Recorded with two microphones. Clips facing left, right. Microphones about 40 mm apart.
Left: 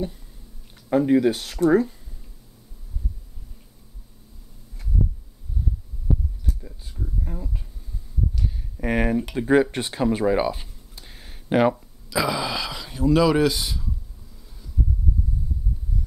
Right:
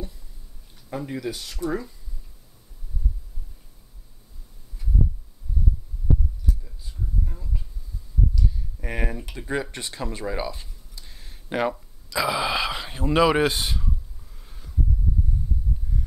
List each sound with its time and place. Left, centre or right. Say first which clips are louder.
0.8 s speech: left 12 dB; left
7.0 s a sound: left 2 dB; centre
8.4 s heart sounds: left 1 dB; left
9.3 s speech: left 10 dB; centre
11.7 s a sound: left 3 dB; centre
12.4 s speech: right 3 dB; right